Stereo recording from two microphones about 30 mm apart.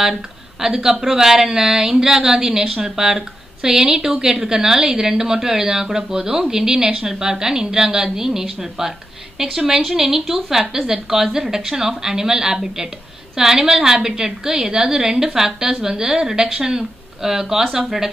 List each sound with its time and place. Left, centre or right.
0.0 s a woman's voice: centre
0.7 s a woman's voice: right
15.1 s a woman's voice: centre